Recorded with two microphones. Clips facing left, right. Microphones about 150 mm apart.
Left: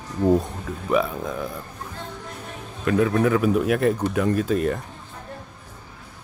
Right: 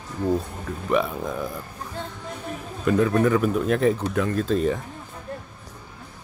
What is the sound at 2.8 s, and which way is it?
Speech, centre (ahead or behind).